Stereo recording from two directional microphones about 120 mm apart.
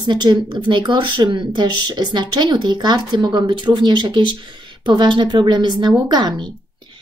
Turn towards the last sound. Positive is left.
turn(degrees=-35)  # may be behind; listen again after turning